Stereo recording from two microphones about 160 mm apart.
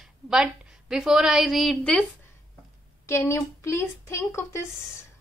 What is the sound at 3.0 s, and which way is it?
A woman's voice, 15° left (ahead or behind).